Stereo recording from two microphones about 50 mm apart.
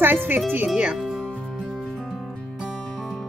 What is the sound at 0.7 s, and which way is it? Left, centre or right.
Speech, centre.